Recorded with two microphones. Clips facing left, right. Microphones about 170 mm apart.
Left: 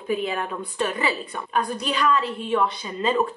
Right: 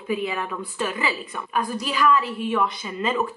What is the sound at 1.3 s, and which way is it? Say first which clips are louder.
Speech: left 1 dB; 25° left (ahead or behind).